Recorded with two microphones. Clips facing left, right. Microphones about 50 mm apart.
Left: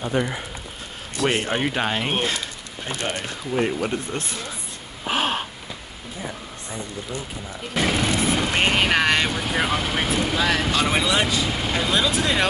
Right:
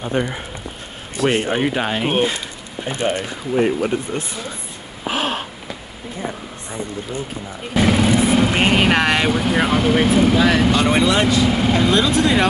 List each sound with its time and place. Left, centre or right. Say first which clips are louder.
0.0 s speech: right 2 dB; right
1.1 s speech: right 4 dB; centre
5.0 s a sound: right 1 dB; centre
7.7 s speech: right 6 dB; centre